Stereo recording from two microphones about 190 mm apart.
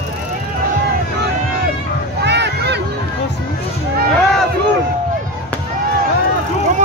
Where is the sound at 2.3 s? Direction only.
65° right (ahead or behind).